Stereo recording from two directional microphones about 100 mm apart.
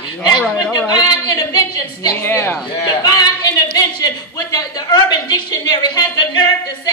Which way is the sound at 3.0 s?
40° left (ahead or behind).